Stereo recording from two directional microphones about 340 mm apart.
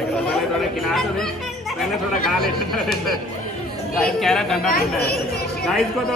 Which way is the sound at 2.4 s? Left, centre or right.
Centre.